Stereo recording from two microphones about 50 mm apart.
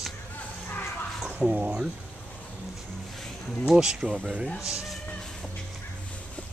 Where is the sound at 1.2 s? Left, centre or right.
Centre.